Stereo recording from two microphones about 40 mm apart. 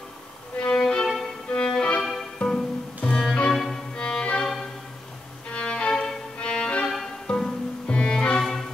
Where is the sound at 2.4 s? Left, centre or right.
Left.